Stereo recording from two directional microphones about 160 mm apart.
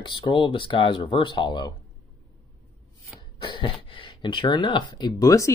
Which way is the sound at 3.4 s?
30° left (ahead or behind).